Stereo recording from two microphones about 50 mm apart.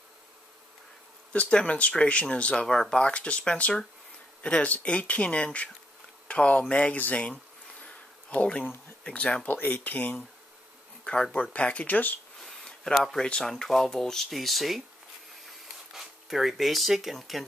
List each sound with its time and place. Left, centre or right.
1.3 s speech: left
7.8 s insect: left
9.1 s speech: left
9.5 s speech: left
11.3 s speech: left
12.4 s a sound: centre
13.2 s speech: centre
13.5 s speech: centre
15.4 s a sound: centre